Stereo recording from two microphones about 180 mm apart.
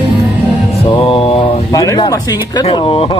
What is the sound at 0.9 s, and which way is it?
Speech, 30° left (ahead or behind).